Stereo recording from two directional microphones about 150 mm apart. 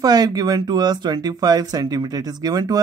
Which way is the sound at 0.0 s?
25° right (ahead or behind).